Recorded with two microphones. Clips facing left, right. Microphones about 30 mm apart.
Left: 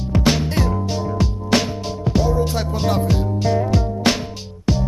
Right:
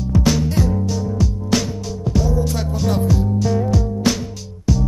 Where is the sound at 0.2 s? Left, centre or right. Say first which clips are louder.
Left 1 dB; left.